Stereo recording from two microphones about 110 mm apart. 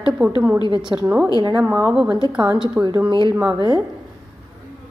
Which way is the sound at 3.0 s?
45° right (ahead or behind).